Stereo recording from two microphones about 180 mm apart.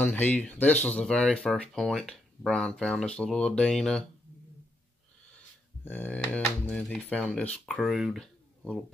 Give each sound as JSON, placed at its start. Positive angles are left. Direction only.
{"t": 0.0, "sound": "speech", "side_deg": 10}
{"t": 5.9, "sound": "speech", "side_deg": 10}